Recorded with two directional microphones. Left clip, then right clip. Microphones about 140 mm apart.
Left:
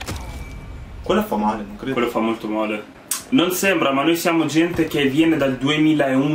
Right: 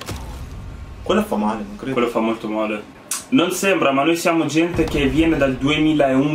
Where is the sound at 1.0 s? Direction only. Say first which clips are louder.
Even; 5° right (ahead or behind).